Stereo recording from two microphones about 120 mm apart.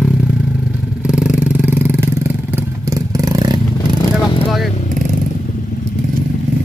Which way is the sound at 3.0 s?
30° right (ahead or behind).